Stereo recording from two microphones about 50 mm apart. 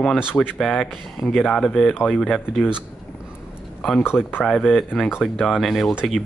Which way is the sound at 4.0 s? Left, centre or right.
Left.